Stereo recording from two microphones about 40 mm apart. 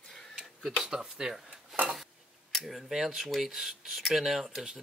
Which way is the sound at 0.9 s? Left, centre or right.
Centre.